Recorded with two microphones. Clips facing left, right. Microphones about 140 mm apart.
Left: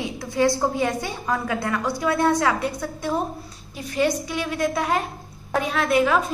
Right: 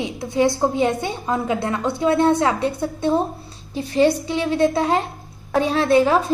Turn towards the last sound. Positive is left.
turn(degrees=-30)  # may be behind; listen again after turning